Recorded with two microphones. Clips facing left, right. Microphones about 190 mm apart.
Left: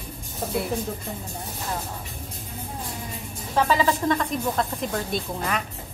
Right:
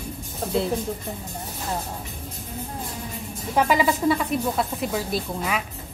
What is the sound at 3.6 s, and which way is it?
A woman's voice, 15° right (ahead or behind).